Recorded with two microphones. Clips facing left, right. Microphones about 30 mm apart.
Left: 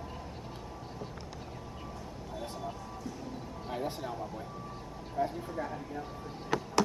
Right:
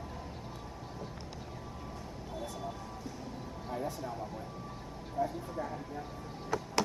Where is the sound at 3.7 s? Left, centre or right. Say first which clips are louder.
Left 1 dB; left.